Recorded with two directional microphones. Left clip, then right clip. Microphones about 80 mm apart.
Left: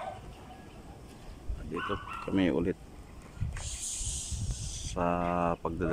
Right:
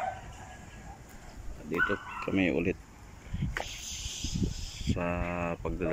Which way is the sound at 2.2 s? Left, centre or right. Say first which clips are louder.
Even; left.